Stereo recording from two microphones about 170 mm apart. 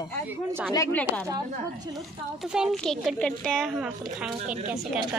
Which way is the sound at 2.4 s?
5° right (ahead or behind).